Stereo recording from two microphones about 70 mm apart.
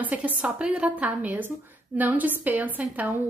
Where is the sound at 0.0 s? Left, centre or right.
Right.